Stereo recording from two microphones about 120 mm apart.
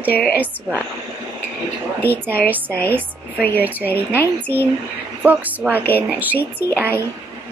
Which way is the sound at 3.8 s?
15° left (ahead or behind).